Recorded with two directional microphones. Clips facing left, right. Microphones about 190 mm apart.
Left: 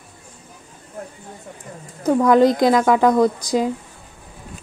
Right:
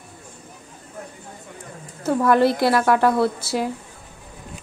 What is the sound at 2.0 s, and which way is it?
Speech, 15° left (ahead or behind).